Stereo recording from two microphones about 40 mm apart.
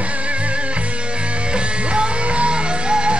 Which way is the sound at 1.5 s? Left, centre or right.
Right.